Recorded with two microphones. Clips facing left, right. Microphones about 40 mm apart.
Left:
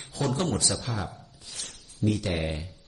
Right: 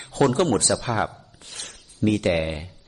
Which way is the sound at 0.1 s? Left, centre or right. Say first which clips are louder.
Right 8 dB; right.